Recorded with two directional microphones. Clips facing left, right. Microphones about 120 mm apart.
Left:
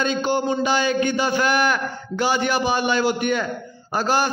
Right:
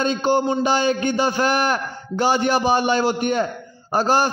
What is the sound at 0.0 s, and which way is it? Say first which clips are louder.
A man's voice: right 2 dB; 35° right (ahead or behind).